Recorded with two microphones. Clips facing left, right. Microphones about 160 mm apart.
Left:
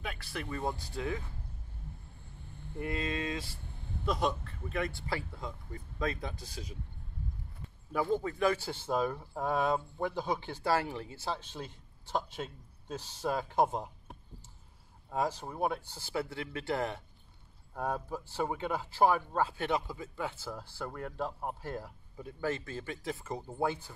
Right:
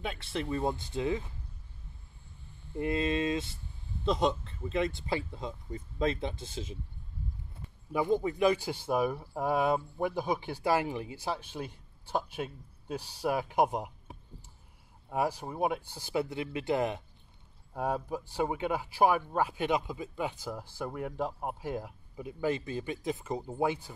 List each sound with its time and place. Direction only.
0.0 s speech: 25° right (ahead or behind)
2.8 s speech: 25° right (ahead or behind)
7.9 s speech: 15° right (ahead or behind)
14.1 s a sound: centre (ahead or behind)
15.0 s speech: 10° right (ahead or behind)